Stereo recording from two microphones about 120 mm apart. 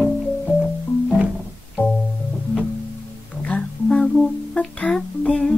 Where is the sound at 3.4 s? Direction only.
10° left (ahead or behind).